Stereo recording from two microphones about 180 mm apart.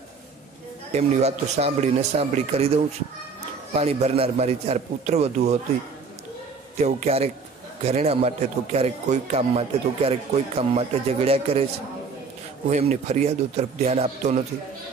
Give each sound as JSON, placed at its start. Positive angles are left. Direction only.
{"t": 0.9, "sound": "a man's voice", "side_deg": -35}
{"t": 3.7, "sound": "a man's voice", "side_deg": -35}
{"t": 6.8, "sound": "a man's voice", "side_deg": -35}
{"t": 12.6, "sound": "a man's voice", "side_deg": -40}